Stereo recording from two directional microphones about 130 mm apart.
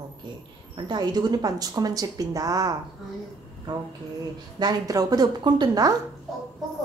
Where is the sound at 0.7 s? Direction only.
35° right (ahead or behind).